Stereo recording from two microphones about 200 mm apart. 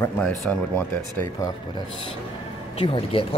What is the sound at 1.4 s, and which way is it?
Speech, 20° left (ahead or behind).